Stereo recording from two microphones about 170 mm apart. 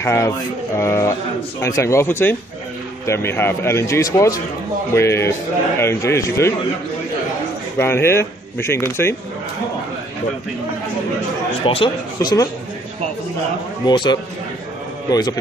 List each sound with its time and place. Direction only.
0.0 s speech: 15° left (ahead or behind)
7.8 s speech: 15° left (ahead or behind)
11.6 s speech: 30° left (ahead or behind)
13.8 s speech: 25° left (ahead or behind)